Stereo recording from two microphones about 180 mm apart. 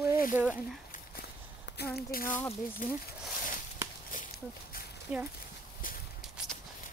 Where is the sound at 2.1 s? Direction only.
55° left (ahead or behind).